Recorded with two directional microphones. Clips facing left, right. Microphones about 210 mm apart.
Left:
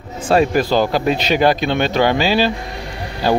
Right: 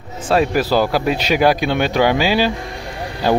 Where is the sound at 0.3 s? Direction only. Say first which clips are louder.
Left 1 dB; 5° right (ahead or behind).